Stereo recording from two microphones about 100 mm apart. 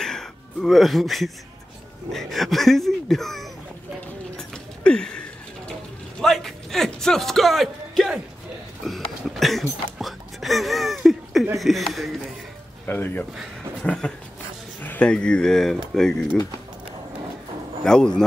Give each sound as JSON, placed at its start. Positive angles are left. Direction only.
{"t": 0.0, "sound": "a sound", "side_deg": 5}
{"t": 2.1, "sound": "speech", "side_deg": 0}
{"t": 4.4, "sound": "a sound", "side_deg": 10}
{"t": 6.1, "sound": "speech", "side_deg": 5}
{"t": 12.8, "sound": "a man's voice", "side_deg": 20}
{"t": 17.8, "sound": "a man's voice", "side_deg": 5}